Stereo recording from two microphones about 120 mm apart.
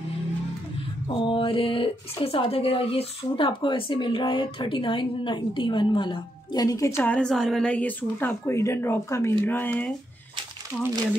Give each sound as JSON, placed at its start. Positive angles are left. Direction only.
{"t": 1.2, "sound": "speech", "side_deg": 45}
{"t": 7.0, "sound": "a woman's voice", "side_deg": 10}
{"t": 10.7, "sound": "speech", "side_deg": -10}